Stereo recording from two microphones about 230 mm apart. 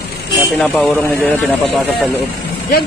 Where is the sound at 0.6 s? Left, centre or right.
Centre.